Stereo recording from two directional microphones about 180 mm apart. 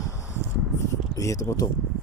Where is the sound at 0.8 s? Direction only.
15° left (ahead or behind).